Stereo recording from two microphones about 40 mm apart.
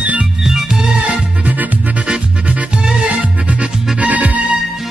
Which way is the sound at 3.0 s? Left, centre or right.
Right.